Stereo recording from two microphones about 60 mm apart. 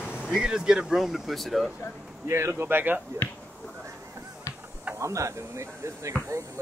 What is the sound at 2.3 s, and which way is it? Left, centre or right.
Speech, right.